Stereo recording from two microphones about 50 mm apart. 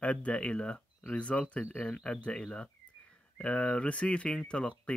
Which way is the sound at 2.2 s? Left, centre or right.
Centre.